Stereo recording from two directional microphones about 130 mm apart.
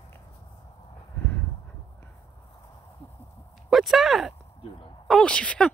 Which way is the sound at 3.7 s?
Centre (ahead or behind).